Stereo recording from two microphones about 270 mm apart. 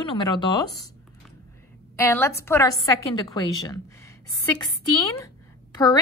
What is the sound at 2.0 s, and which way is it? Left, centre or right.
A woman's voice, centre.